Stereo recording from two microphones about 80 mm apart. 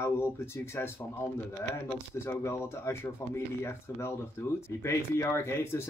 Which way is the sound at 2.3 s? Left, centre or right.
Left.